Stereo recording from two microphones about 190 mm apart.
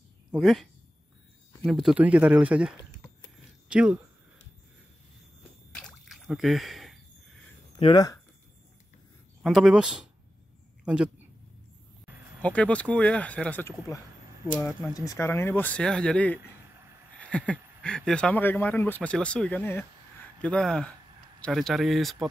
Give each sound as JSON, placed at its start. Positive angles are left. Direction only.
{"t": 0.3, "sound": "speech", "side_deg": 0}
{"t": 1.7, "sound": "speech", "side_deg": 0}
{"t": 5.8, "sound": "drip", "side_deg": 0}
{"t": 7.8, "sound": "speech", "side_deg": 20}
{"t": 9.4, "sound": "speech", "side_deg": 0}
{"t": 12.4, "sound": "speech", "side_deg": 5}